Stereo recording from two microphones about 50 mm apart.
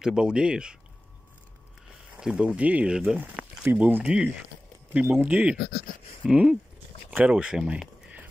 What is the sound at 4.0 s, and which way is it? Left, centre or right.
Speech, centre.